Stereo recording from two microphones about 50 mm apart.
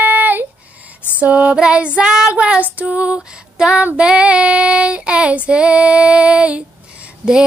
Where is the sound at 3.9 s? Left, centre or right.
Right.